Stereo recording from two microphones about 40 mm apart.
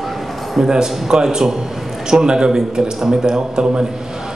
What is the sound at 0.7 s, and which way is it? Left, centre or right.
A man's voice, centre.